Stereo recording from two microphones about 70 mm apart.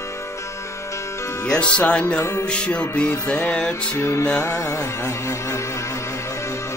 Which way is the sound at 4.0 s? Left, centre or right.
Left.